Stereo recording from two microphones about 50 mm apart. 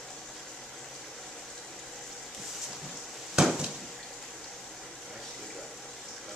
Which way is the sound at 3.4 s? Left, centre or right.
Centre.